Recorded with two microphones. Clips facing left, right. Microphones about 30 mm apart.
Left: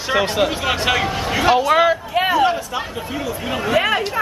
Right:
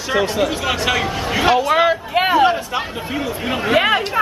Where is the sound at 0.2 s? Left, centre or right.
Centre.